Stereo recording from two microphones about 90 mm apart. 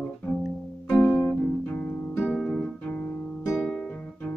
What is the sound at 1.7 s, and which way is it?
Music, 20° left (ahead or behind).